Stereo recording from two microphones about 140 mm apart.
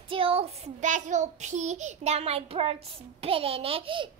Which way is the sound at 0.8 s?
60° right (ahead or behind).